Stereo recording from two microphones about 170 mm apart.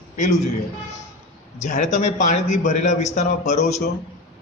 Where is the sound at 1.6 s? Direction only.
45° left (ahead or behind).